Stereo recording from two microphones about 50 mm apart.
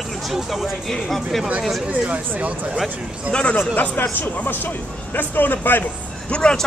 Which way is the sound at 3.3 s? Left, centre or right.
Centre.